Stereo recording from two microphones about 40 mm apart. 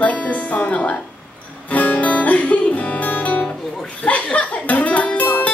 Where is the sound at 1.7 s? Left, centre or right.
Left.